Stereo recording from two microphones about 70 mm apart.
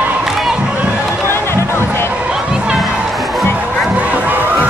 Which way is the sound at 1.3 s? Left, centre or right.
Left.